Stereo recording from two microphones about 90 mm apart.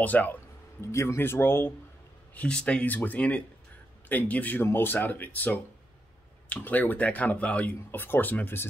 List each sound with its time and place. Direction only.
0.0 s music: 20° left (ahead or behind)
0.9 s speech: 30° left (ahead or behind)
2.3 s speech: 10° left (ahead or behind)